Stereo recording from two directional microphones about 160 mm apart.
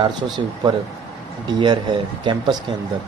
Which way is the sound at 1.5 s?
30° right (ahead or behind).